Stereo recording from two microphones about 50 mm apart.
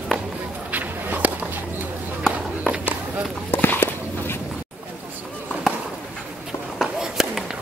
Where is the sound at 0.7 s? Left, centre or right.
Right.